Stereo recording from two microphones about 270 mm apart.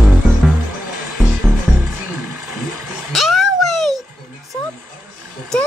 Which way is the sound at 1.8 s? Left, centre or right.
Centre.